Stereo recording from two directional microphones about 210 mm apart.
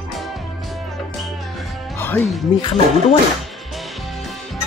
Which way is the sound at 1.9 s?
10° left (ahead or behind).